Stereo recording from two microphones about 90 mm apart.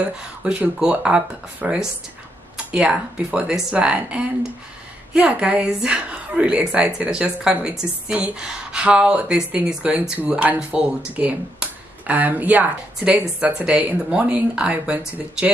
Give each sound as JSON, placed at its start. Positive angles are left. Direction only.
{"t": 0.0, "sound": "a woman's voice", "side_deg": -15}